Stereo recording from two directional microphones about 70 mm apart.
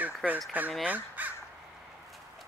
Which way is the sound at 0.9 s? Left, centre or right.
Right.